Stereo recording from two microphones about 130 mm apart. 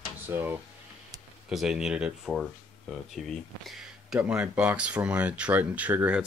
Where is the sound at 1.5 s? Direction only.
5° right (ahead or behind).